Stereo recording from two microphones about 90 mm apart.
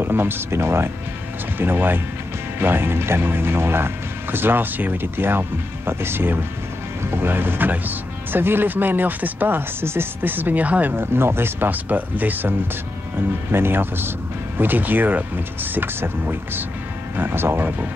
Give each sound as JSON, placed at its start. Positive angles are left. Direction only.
{"t": 0.0, "sound": "speech", "side_deg": -25}